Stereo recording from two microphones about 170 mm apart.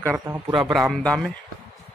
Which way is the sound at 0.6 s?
Centre (ahead or behind).